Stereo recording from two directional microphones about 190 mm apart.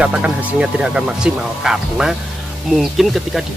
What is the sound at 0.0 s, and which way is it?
Speech, 5° right (ahead or behind).